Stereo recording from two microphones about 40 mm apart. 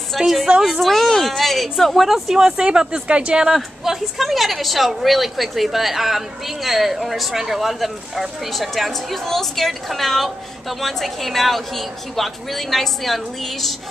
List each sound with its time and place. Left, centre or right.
0.2 s speech: centre
2.3 s speech: centre
3.4 s speech: centre